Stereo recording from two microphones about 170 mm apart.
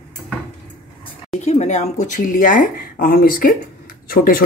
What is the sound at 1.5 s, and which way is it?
A woman's voice, 40° left (ahead or behind).